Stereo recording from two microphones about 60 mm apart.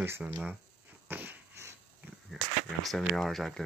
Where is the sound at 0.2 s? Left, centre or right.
Right.